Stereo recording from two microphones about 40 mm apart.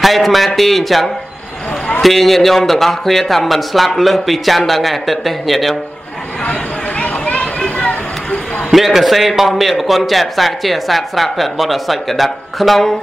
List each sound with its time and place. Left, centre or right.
0.0 s speech: centre
7.0 s a sound: left
8.6 s speech: centre